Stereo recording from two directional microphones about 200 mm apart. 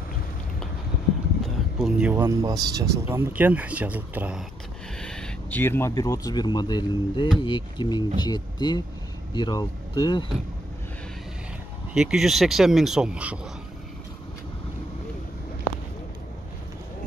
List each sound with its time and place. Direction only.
1.4 s speech: centre (ahead or behind)
5.0 s speech: 5° left (ahead or behind); by 10.2 s 25° left (ahead or behind)
11.9 s speech: 5° right (ahead or behind)